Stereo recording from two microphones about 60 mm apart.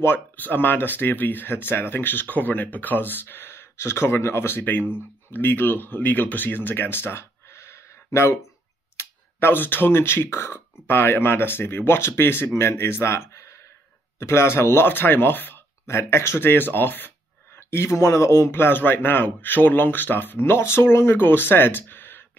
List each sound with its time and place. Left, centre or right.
0.0 s speech: left
8.9 s speech: left
17.6 s speech: left
18.5 s speech: left